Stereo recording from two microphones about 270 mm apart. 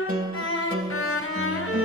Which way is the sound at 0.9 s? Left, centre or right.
Left.